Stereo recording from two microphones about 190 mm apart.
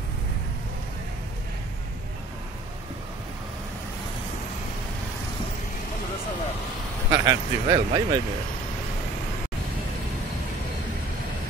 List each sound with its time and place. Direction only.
7.1 s speech: 20° right (ahead or behind)